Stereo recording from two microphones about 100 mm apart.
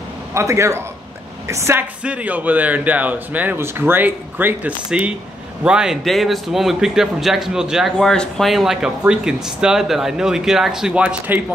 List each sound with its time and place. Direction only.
0.3 s a man's voice: 30° right (ahead or behind)
2.0 s a man's voice: 15° right (ahead or behind)
5.6 s speech: 10° right (ahead or behind)